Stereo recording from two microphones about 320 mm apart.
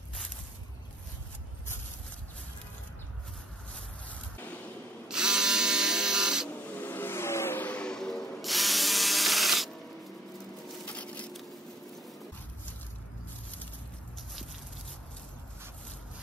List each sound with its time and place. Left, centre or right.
4.1 s a sound: centre
5.0 s electric toothbrush: centre
10.9 s patter: centre